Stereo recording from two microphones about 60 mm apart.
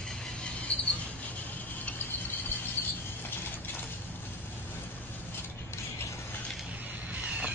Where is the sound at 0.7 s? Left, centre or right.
Left.